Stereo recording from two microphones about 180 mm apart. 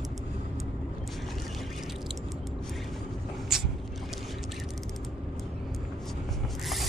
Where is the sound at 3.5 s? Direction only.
Centre (ahead or behind).